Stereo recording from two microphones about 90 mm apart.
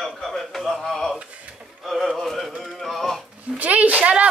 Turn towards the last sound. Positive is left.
turn(degrees=-15)  # may be behind; listen again after turning